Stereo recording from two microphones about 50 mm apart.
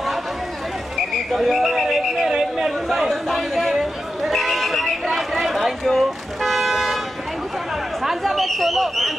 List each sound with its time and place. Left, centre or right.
1.3 s chatter: centre
5.1 s toot: centre
8.0 s a sound: centre